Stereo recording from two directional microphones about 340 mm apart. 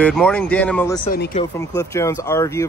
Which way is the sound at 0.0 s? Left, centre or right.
Centre.